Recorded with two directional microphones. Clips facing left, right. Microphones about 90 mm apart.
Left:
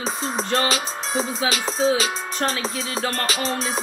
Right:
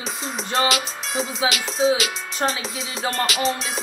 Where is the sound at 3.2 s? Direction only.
35° left (ahead or behind).